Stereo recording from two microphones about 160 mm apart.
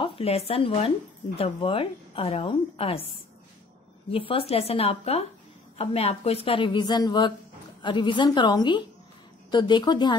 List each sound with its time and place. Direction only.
0.0 s speech: 35° left (ahead or behind)
4.1 s a woman's voice: 35° left (ahead or behind)